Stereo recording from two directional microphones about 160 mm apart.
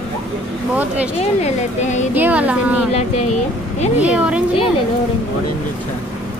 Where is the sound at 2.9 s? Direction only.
40° left (ahead or behind).